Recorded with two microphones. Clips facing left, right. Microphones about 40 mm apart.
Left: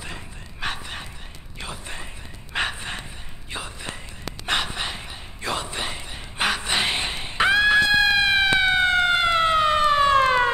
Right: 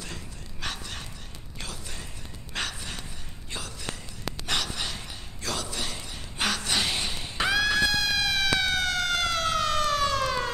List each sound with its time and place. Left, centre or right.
0.0 s dog: left
1.6 s a sound: left
4.5 s gasp: left